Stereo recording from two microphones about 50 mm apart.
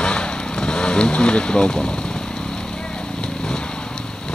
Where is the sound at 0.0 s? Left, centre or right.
Centre.